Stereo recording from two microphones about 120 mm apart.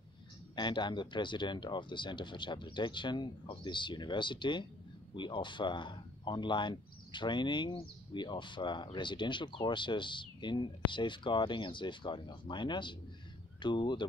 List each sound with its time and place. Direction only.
0.6 s speech: 40° left (ahead or behind)